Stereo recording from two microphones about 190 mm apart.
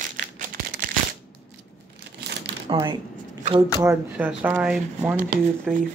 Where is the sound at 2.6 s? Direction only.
25° right (ahead or behind).